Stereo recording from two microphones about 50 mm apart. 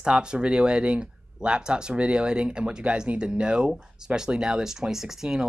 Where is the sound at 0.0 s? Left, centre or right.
Centre.